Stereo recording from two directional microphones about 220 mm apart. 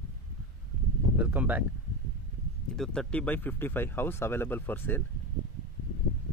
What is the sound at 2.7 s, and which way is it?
Speech, centre (ahead or behind).